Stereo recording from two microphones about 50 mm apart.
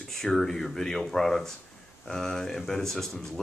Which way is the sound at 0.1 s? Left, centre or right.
Centre.